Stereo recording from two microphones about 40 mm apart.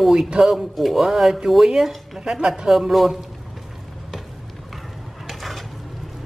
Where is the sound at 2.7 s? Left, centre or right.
Centre.